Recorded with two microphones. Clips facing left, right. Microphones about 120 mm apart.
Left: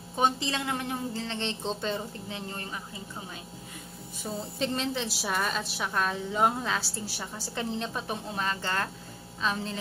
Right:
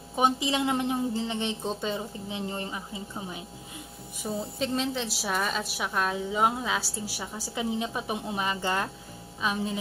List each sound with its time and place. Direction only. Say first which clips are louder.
0.1 s a woman's voice: right 2 dB; 10° right (ahead or behind)
2.3 s a woman's voice: right 6 dB; 20° right (ahead or behind)
4.2 s a woman's voice: right 1 dB; centre (ahead or behind)